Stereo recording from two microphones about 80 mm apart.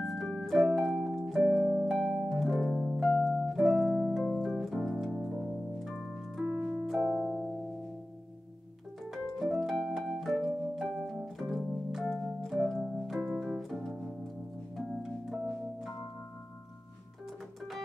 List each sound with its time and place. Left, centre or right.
0.0 s organ: centre
1.0 s music: centre
3.3 s keyboard: centre
4.4 s organ: centre
5.1 s keyboard: centre
6.4 s keyboard: centre
6.9 s music: centre
9.0 s music: centre
11.3 s piano: centre
11.9 s organ: centre
12.9 s keyboard: centre
13.6 s music: centre